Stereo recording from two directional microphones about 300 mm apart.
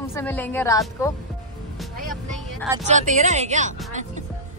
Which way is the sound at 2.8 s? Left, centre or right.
Right.